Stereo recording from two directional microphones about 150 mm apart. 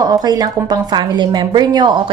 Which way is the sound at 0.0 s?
25° right (ahead or behind).